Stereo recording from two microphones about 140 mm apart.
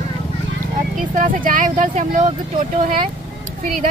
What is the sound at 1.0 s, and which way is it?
Speech, 75° right (ahead or behind).